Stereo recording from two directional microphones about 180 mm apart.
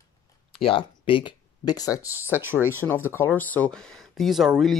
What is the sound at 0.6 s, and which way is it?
Speech, 30° left (ahead or behind).